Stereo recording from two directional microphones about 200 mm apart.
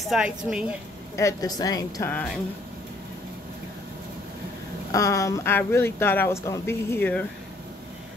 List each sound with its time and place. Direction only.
0.0 s a woman's voice: centre (ahead or behind)
1.1 s speech: 15° left (ahead or behind)
4.9 s speech: 15° left (ahead or behind)